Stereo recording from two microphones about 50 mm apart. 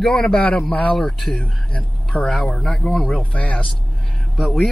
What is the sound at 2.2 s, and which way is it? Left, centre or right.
Speech, centre.